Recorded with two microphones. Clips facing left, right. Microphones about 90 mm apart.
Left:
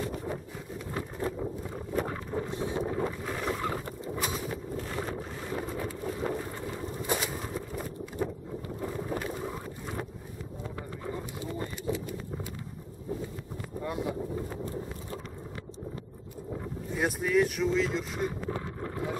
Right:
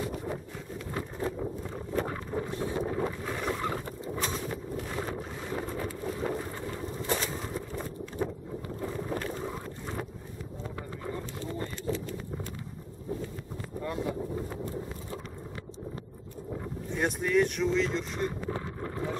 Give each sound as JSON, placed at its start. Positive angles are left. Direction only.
{"t": 0.0, "sound": "vehicle", "side_deg": 0}
{"t": 0.9, "sound": "a sound", "side_deg": 5}
{"t": 2.0, "sound": "boat", "side_deg": 0}
{"t": 2.5, "sound": "wind noise", "side_deg": 20}
{"t": 2.9, "sound": "boat", "side_deg": 0}
{"t": 7.0, "sound": "a sound", "side_deg": 10}
{"t": 8.8, "sound": "boat", "side_deg": 5}
{"t": 11.1, "sound": "horse", "side_deg": 15}
{"t": 13.7, "sound": "a sound", "side_deg": 15}
{"t": 16.9, "sound": "speech", "side_deg": 5}